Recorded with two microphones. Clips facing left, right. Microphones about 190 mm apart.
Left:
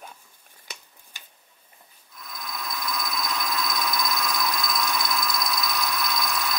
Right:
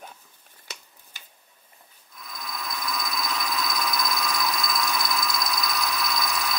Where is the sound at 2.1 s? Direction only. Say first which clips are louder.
Even; centre (ahead or behind).